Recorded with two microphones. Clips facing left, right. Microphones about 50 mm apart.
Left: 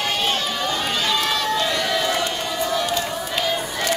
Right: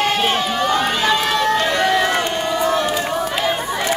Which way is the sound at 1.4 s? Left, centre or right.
Right.